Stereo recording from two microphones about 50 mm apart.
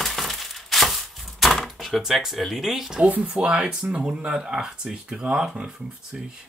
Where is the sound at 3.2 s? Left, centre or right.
Right.